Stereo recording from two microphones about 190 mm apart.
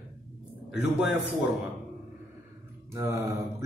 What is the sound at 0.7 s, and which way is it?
Speech, 5° right (ahead or behind).